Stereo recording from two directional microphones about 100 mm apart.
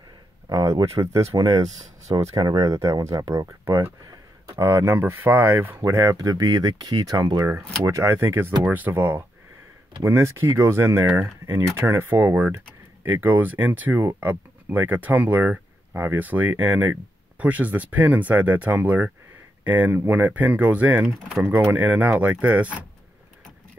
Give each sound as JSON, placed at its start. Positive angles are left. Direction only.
{"t": 0.5, "sound": "speech", "side_deg": -40}
{"t": 1.4, "sound": "speech", "side_deg": -45}
{"t": 5.9, "sound": "speech", "side_deg": -30}